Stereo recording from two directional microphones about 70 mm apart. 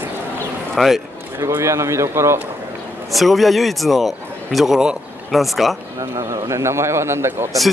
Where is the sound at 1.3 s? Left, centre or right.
Right.